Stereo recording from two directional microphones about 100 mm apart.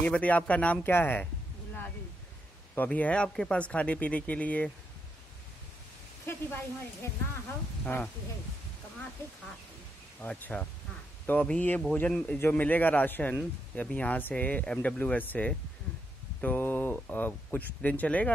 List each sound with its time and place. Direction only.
0.0 s speech: 15° left (ahead or behind)
2.7 s speech: 15° left (ahead or behind)
6.2 s speech: 25° left (ahead or behind)
7.8 s speech: 15° left (ahead or behind)
10.2 s speech: 15° left (ahead or behind)